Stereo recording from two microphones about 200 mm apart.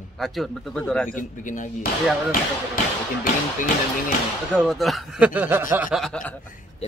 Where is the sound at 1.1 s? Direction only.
40° left (ahead or behind).